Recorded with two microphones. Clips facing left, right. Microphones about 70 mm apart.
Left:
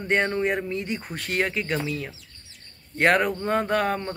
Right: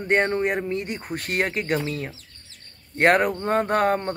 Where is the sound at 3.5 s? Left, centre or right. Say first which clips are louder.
Right 4 dB; right.